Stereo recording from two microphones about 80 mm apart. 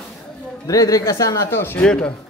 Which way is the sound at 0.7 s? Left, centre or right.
Left.